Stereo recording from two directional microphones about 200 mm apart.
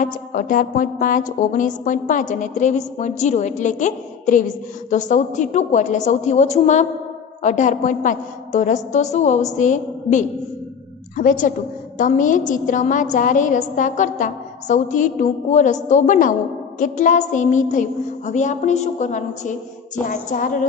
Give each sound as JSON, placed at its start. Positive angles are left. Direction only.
{"t": 0.0, "sound": "a woman's voice", "side_deg": 40}